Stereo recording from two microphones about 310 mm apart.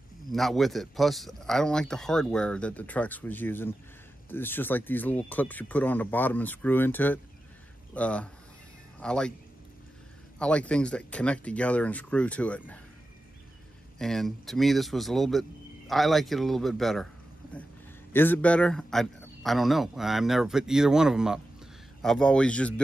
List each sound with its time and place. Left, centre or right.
0.3 s speech: centre
10.4 s speech: centre
13.9 s speech: centre
18.1 s speech: centre